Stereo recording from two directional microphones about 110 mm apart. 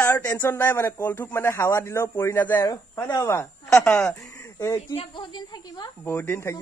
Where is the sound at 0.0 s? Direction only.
25° left (ahead or behind).